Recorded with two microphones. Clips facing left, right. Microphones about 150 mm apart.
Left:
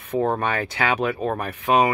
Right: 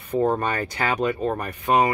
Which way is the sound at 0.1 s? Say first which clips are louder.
Even; 10° left (ahead or behind).